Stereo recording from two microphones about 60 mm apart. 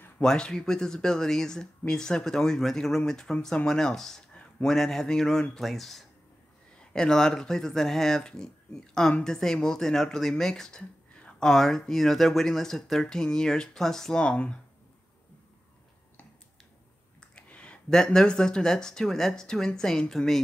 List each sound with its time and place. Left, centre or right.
0.2 s speech: centre
6.8 s speech: centre
17.2 s a sound: centre
17.9 s speech: centre